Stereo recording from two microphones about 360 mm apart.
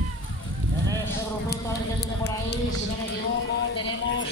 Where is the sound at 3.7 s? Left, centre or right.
Left.